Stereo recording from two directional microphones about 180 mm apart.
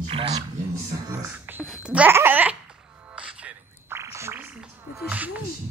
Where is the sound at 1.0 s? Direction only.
10° right (ahead or behind).